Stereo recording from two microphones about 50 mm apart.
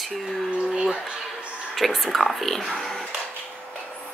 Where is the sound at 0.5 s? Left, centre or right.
Centre.